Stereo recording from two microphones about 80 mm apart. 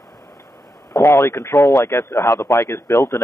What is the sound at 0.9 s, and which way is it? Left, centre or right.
A man's voice, left.